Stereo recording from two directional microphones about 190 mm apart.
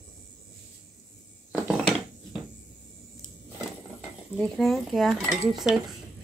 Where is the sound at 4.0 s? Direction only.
Centre (ahead or behind).